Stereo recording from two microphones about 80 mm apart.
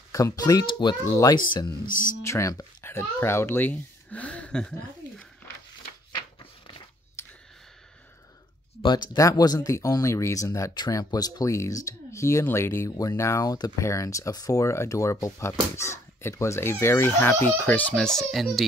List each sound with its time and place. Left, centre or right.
0.1 s speech: left
0.7 s speech: left
2.2 s speech: left; by 4.7 s centre
7.2 s a sound: left
8.8 s speech: left
12.9 s speech: left
17.9 s speech: centre